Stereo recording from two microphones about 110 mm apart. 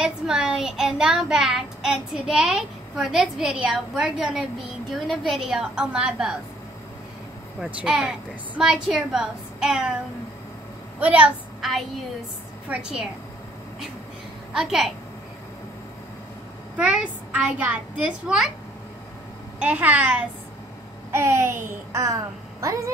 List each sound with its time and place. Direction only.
0.0 s child singing: 5° right (ahead or behind)
7.6 s child singing: 5° right (ahead or behind)
11.0 s a woman's voice: 10° right (ahead or behind)
14.5 s a woman's voice: 5° right (ahead or behind)
16.7 s a child's voice: 10° right (ahead or behind)
19.6 s a child's voice: 15° right (ahead or behind)
21.1 s a child's voice: 25° right (ahead or behind)